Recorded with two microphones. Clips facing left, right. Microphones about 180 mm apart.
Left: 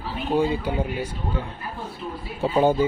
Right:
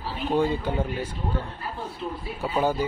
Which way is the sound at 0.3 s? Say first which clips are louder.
Left 2 dB; 10° left (ahead or behind).